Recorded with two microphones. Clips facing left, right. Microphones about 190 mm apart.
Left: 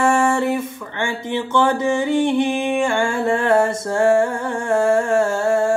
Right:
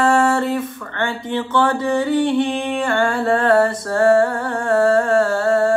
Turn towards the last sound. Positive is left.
turn(degrees=20)  # may be behind; listen again after turning